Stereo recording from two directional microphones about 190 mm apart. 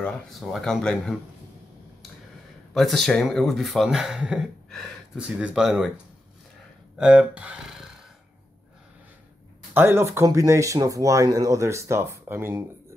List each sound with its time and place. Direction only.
0.0 s speech: centre (ahead or behind)
2.7 s speech: centre (ahead or behind)
7.0 s speech: 5° right (ahead or behind)
9.8 s speech: 15° right (ahead or behind)